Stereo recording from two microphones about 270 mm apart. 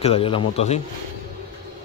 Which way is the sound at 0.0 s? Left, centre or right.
Left.